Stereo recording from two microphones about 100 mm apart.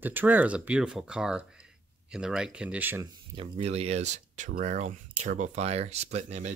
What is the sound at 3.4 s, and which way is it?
Speech, 90° right.